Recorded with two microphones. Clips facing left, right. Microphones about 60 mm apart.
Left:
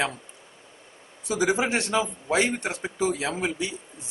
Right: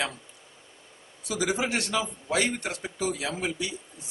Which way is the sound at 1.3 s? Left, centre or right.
Left.